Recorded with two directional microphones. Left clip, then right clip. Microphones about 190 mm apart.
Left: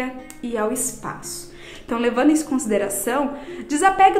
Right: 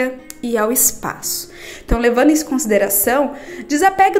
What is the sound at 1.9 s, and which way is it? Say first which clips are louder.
A woman's voice: right 5 dB; 20° right (ahead or behind).